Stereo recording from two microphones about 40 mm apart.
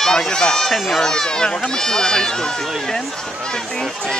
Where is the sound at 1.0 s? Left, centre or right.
Centre.